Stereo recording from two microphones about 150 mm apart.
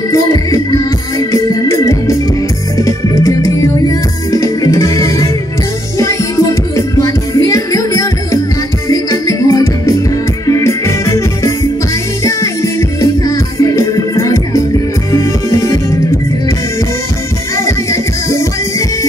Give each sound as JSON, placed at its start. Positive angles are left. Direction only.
{"t": 0.1, "sound": "music", "side_deg": 20}
{"t": 1.3, "sound": "organ", "side_deg": 20}
{"t": 2.8, "sound": "music", "side_deg": 20}
{"t": 7.0, "sound": "music", "side_deg": 20}
{"t": 17.6, "sound": "music", "side_deg": 20}